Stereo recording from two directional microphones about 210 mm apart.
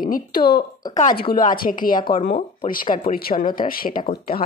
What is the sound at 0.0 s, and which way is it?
A woman's voice, 45° left (ahead or behind).